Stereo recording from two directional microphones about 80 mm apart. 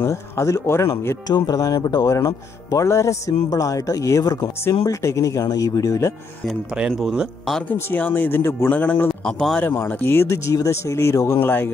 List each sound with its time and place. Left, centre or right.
0.0 s speech: left
1.2 s speech: left
2.1 s speech: left
6.9 s speech: centre
7.7 s speech: left
8.7 s speech: left
9.2 s speech: centre
9.6 s speech: left
11.3 s speech: left